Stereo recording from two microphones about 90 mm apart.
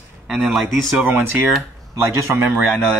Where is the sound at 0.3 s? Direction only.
Centre (ahead or behind).